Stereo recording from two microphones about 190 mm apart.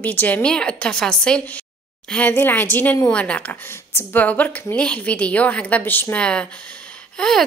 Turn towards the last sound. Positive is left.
turn(degrees=5)  # may be behind; listen again after turning